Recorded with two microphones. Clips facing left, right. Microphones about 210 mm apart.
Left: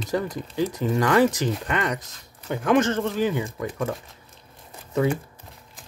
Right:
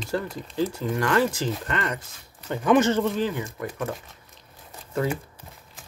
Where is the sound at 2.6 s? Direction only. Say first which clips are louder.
Right 1 dB; 5° right (ahead or behind).